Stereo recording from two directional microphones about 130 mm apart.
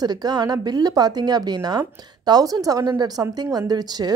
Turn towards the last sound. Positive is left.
turn(degrees=-30)  # may be behind; listen again after turning